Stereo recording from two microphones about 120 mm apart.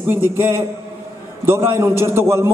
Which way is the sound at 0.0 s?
20° right (ahead or behind).